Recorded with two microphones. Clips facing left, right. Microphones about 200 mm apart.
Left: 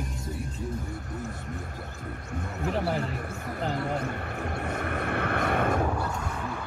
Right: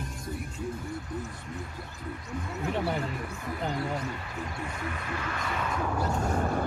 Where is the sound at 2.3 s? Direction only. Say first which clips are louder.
Left 1 dB; 55° left (ahead or behind).